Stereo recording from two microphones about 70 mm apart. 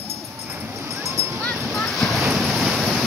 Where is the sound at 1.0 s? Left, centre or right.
Right.